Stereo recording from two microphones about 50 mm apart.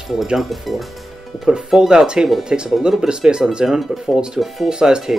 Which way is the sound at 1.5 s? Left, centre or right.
Centre.